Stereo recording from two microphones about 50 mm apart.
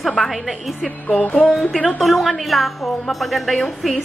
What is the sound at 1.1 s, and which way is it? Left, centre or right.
Speech, centre.